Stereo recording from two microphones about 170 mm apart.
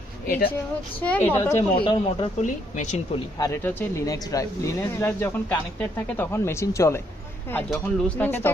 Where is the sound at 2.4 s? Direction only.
45° left (ahead or behind).